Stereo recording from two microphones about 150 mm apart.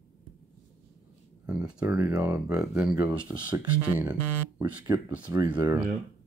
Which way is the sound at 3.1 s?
30° right (ahead or behind).